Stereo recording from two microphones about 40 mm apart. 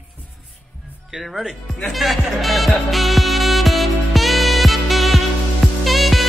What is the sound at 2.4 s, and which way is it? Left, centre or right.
Music, centre.